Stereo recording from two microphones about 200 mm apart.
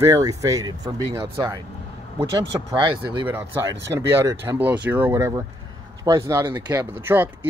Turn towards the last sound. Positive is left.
turn(degrees=-10)  # may be behind; listen again after turning